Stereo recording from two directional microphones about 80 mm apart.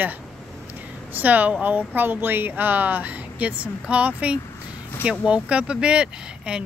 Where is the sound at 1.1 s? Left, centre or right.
Centre.